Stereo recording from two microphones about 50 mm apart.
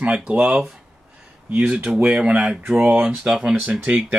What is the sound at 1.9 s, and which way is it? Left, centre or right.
Speech, centre.